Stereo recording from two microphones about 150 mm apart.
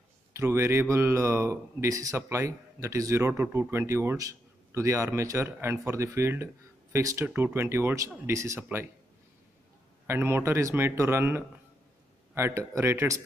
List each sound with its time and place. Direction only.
0.3 s speech: 20° right (ahead or behind)
10.0 s speech: 15° right (ahead or behind)